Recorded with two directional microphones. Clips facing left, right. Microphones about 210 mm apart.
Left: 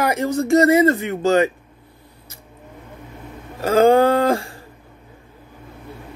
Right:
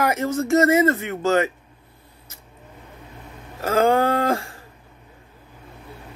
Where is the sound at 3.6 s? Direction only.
35° left (ahead or behind).